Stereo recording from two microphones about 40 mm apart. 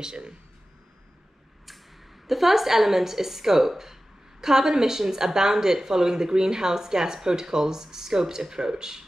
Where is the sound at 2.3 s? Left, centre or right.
Centre.